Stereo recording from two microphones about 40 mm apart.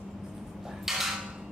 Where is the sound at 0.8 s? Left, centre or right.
Centre.